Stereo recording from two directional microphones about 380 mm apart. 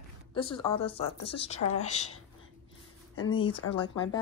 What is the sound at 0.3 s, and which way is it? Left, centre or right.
A woman's voice, centre.